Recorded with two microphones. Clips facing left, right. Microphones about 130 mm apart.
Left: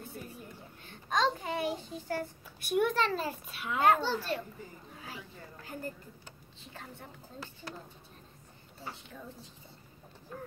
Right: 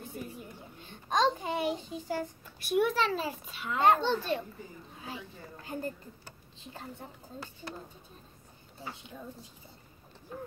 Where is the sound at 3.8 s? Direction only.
20° right (ahead or behind).